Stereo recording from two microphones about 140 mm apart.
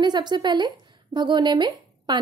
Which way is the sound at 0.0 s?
30° right (ahead or behind).